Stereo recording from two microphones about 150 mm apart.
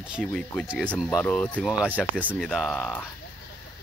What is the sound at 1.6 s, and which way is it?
Speech, 10° right (ahead or behind).